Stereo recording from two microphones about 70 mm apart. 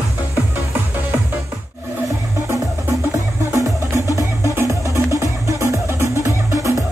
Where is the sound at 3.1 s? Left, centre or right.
Right.